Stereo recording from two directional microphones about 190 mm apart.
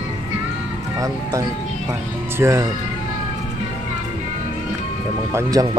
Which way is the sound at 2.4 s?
15° right (ahead or behind).